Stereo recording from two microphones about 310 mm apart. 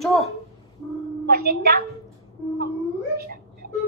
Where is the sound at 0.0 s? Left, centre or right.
Centre.